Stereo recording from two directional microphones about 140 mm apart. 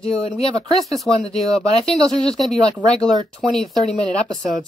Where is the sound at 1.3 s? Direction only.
Centre (ahead or behind).